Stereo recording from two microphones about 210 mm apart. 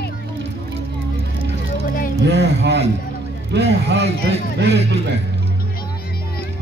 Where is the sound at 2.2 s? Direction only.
55° right (ahead or behind).